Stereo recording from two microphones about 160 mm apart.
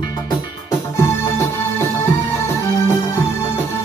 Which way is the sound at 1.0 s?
15° left (ahead or behind).